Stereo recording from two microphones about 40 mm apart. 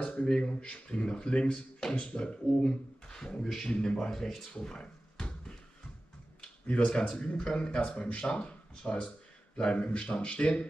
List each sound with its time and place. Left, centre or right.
0.0 s speech: left
4.1 s speech: centre
4.6 s a sound: centre
6.7 s speech: left